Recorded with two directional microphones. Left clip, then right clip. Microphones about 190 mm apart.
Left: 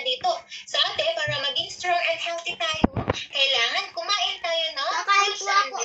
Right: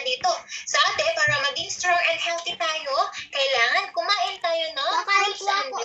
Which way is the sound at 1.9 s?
15° left (ahead or behind).